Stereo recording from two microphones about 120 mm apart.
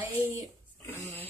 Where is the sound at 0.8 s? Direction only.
20° left (ahead or behind).